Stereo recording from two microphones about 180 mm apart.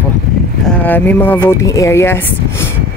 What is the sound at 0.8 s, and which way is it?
Speech, 10° left (ahead or behind).